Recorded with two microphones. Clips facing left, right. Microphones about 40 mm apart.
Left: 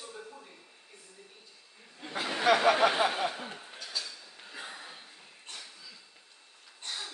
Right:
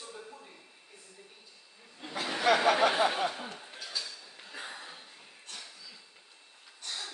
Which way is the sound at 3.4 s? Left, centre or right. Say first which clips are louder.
Even; centre.